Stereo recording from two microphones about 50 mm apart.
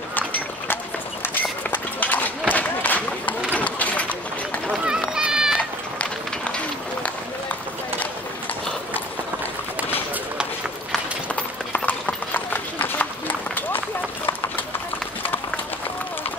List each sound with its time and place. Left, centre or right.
0.1 s run: left
5.1 s run: centre
5.6 s run: left
11.7 s clip-clop: left